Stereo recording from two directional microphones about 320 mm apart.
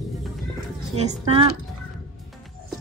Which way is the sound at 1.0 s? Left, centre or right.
Centre.